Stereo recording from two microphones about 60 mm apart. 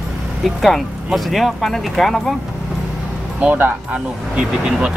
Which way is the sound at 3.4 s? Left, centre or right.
Right.